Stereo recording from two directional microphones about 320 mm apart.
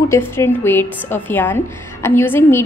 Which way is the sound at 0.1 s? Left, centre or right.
Centre.